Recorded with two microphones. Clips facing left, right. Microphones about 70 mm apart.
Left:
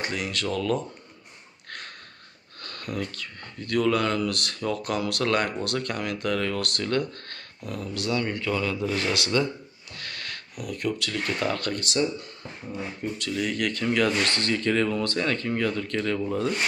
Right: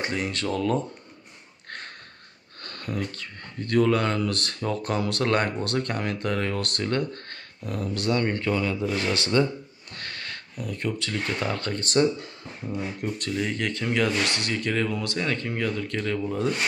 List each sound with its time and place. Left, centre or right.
0.0 s speech: right
2.6 s speech: right
8.5 s speech: centre
9.9 s a sound: right
10.6 s speech: right
11.8 s speech: right
13.3 s speech: centre